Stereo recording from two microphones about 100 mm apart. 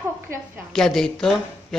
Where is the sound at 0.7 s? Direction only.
5° left (ahead or behind).